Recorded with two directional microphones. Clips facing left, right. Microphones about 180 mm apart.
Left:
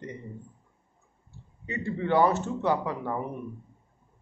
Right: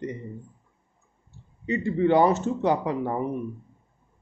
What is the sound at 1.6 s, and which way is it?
A man's voice, 20° right (ahead or behind).